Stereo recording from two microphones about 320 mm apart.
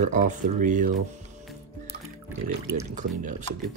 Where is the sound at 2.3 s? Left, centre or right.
Centre.